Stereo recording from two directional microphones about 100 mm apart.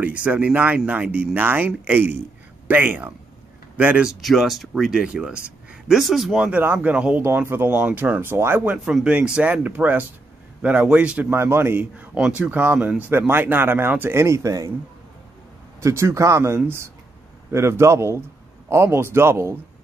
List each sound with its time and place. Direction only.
0.0 s speech: 15° right (ahead or behind)
6.5 s speech: 20° right (ahead or behind)
8.7 s speech: 10° right (ahead or behind); by 14.7 s 35° right (ahead or behind)
15.8 s speech: 30° right (ahead or behind)